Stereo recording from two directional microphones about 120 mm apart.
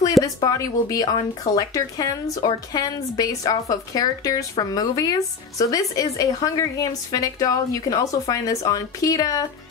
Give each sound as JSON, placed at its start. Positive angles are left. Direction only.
{"t": 0.2, "sound": "a woman's voice", "side_deg": 30}